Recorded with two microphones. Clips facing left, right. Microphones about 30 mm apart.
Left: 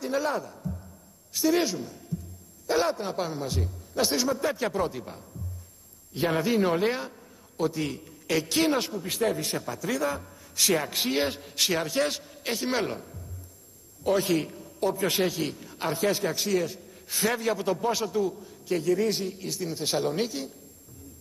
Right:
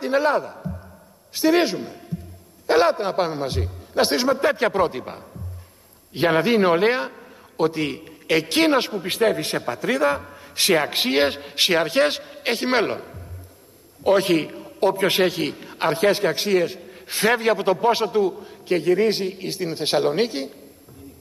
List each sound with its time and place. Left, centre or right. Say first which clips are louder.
0.0 s a man's voice: right 8 dB; right